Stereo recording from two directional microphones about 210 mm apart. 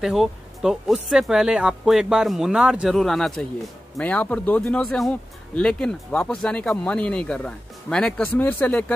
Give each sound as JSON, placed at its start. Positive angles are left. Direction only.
{"t": 0.0, "sound": "speech", "side_deg": 0}